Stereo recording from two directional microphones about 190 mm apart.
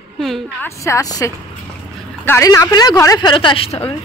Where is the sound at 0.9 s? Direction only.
20° left (ahead or behind).